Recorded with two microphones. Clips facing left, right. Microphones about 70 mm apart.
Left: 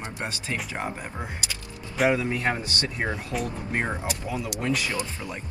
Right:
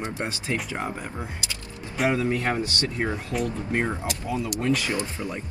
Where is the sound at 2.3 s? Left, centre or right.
Left.